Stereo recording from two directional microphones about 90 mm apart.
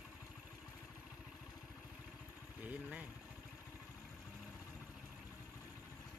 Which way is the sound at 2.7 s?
15° right (ahead or behind).